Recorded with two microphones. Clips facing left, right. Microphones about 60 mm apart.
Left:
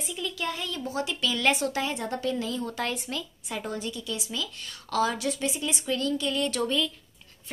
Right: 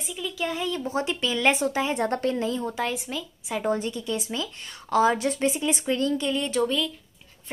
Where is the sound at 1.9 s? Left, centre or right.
Right.